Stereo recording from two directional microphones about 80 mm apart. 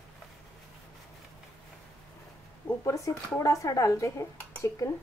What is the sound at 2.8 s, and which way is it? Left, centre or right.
Speech, left.